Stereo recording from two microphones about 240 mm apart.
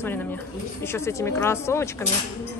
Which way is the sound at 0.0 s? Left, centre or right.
Centre.